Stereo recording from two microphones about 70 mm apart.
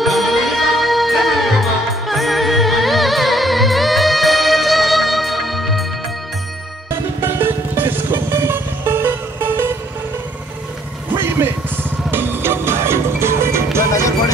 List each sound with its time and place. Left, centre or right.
0.0 s music: centre
6.9 s music: right
11.1 s vehicle: right
12.1 s music: right
13.9 s music: left